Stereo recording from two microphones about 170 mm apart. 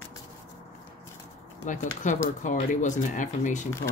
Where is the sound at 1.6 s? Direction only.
45° left (ahead or behind).